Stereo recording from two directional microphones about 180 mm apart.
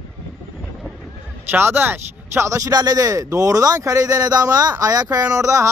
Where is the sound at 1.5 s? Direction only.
10° right (ahead or behind).